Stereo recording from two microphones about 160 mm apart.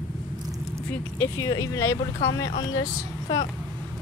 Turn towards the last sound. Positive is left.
turn(degrees=25)  # may be behind; listen again after turning